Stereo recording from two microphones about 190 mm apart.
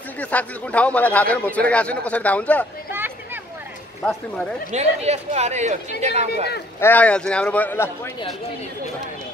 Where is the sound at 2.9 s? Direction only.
10° right (ahead or behind).